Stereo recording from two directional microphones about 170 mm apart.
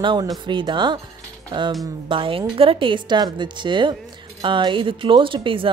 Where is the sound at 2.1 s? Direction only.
30° right (ahead or behind).